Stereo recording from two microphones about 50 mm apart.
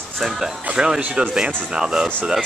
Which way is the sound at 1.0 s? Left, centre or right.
Right.